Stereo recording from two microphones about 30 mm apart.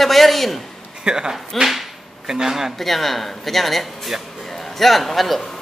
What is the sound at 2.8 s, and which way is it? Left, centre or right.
A man's voice, centre.